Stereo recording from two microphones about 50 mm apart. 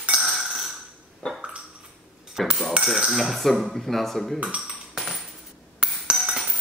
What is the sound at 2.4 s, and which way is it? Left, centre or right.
Dishes, centre.